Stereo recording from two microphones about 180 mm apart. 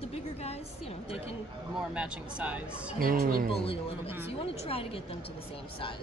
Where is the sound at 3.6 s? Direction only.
30° left (ahead or behind).